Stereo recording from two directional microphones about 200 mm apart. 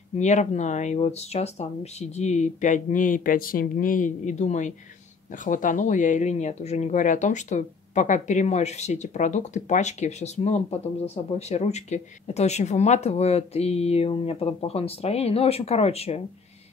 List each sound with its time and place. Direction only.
0.2 s speech: 35° left (ahead or behind)